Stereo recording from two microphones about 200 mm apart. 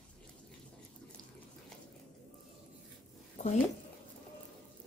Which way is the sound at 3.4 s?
35° left (ahead or behind).